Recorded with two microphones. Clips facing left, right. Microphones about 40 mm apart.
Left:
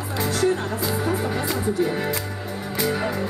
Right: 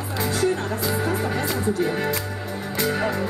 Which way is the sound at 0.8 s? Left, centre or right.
Centre.